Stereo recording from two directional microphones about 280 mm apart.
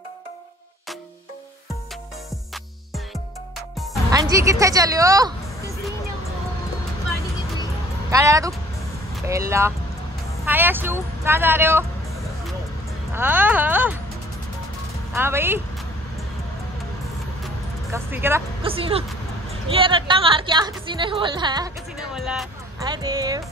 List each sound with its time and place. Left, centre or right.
3.7 s music: centre
4.1 s a woman's voice: centre
8.1 s a woman's voice: centre
9.1 s vehicle: centre
9.5 s a woman's voice: centre
13.1 s a woman's voice: centre
15.1 s a woman's voice: centre
17.9 s a woman's voice: centre
18.6 s a woman's voice: centre
22.1 s speech: centre
22.8 s a woman's voice: centre